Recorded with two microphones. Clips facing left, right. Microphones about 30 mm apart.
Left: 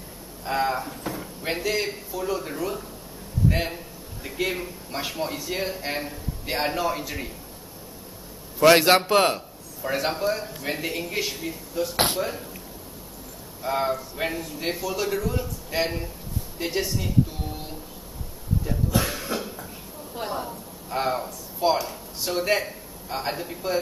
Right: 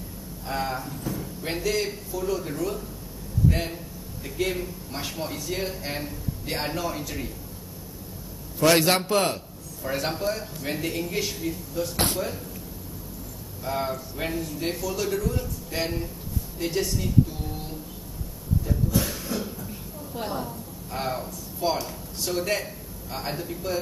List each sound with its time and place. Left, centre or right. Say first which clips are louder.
0.5 s a man's voice: left 4 dB; centre
1.0 s a sound: even; left
1.4 s a man's voice: left 1 dB; centre
8.5 s a man's voice: left 4 dB; centre
13.7 s a man's voice: left 4 dB; centre
16.5 s music: even; centre
19.0 s cough: left 2 dB; left
20.2 s speech: left 1 dB; centre